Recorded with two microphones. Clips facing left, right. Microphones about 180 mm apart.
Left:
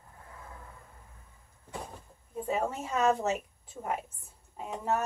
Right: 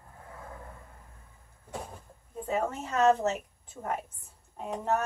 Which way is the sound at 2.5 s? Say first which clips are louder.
Right 1 dB; 10° left (ahead or behind).